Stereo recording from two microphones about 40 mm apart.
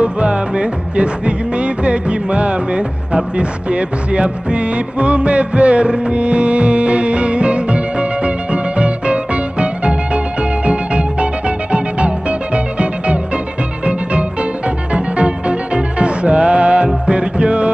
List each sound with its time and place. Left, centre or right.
0.0 s music: right
14.9 s music: right